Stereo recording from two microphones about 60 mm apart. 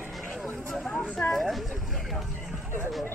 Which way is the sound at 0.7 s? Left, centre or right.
Centre.